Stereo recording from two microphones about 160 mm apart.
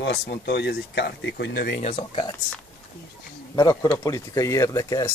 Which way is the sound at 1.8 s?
40° left (ahead or behind).